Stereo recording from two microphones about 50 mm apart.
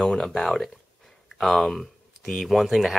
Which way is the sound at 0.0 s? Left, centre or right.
Centre.